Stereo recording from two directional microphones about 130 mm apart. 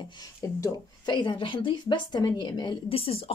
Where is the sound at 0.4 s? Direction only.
25° left (ahead or behind).